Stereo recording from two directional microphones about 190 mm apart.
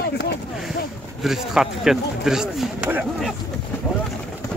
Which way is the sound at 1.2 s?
Centre (ahead or behind).